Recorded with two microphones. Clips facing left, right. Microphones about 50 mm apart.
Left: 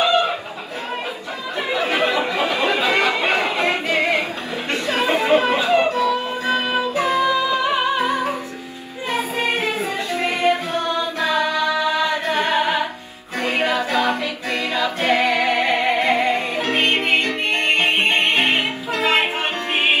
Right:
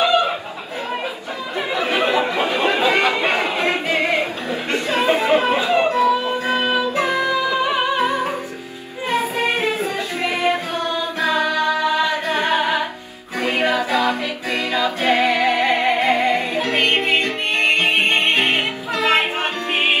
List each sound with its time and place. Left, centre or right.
0.0 s chicken: left
2.0 s chatter: right
3.6 s choir: right
4.7 s music: right
9.1 s music: right
11.1 s a capella: right
13.4 s music: right
14.5 s choir: right
15.0 s music: right
16.6 s music: left